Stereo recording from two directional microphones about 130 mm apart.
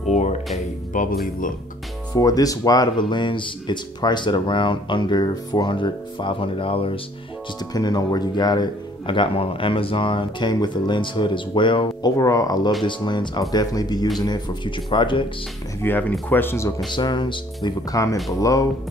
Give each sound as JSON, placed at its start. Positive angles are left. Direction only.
{"t": 0.1, "sound": "music", "side_deg": 60}
{"t": 0.9, "sound": "speech", "side_deg": 90}
{"t": 2.1, "sound": "speech", "side_deg": 30}
{"t": 7.7, "sound": "speech", "side_deg": 30}
{"t": 15.8, "sound": "speech", "side_deg": 15}
{"t": 16.9, "sound": "speech", "side_deg": 35}
{"t": 17.6, "sound": "speech", "side_deg": 25}